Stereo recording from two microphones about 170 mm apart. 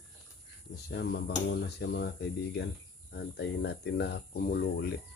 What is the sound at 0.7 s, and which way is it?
Speech, 75° left (ahead or behind).